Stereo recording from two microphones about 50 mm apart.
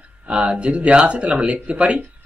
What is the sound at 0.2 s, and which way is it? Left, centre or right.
Speech, right.